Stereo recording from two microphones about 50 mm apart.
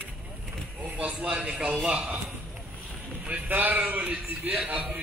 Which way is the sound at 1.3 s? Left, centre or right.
Centre.